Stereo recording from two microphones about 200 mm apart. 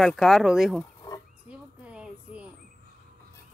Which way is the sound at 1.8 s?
5° right (ahead or behind).